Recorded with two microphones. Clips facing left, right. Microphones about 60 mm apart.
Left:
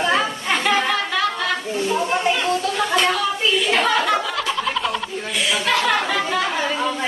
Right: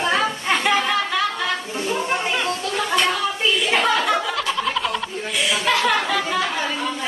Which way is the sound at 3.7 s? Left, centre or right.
Centre.